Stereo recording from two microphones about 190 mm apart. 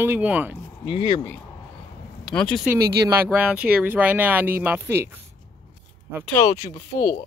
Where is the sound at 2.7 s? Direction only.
10° right (ahead or behind).